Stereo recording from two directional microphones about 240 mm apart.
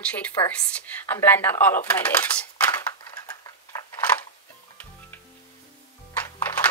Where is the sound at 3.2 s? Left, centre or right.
Centre.